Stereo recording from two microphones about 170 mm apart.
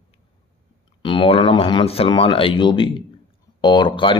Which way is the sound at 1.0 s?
30° left (ahead or behind).